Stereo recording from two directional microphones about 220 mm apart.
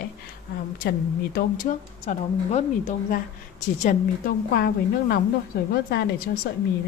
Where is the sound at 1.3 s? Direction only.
35° left (ahead or behind).